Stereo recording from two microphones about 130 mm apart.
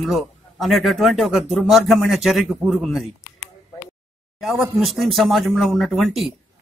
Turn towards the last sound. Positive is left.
turn(degrees=0)  # may be behind; listen again after turning